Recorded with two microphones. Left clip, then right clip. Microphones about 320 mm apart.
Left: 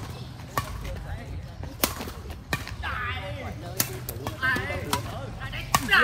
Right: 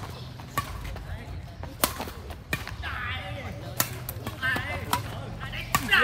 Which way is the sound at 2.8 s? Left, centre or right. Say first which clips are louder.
Left 3 dB; centre.